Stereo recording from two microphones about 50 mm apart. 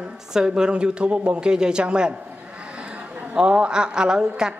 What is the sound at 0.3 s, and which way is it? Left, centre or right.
A woman's voice, centre.